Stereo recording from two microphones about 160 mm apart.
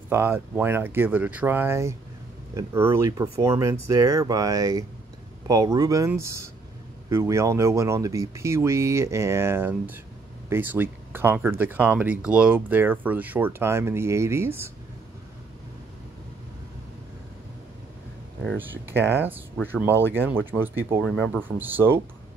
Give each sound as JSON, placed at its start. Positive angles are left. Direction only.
{"t": 0.1, "sound": "speech", "side_deg": -15}
{"t": 18.6, "sound": "speech", "side_deg": -15}
{"t": 21.0, "sound": "speech", "side_deg": 0}
{"t": 21.4, "sound": "speech", "side_deg": -10}